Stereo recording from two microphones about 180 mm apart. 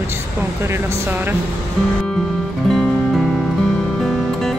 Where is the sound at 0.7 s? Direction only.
10° right (ahead or behind).